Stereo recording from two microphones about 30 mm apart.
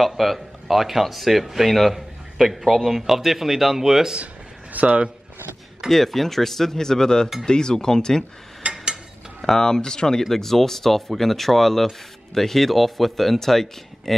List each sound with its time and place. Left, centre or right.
0.2 s a man's voice: centre
4.7 s speech: right
5.9 s speech: centre; by 8.3 s left
8.6 s a sound: right
9.5 s speech: centre
10.3 s speech: centre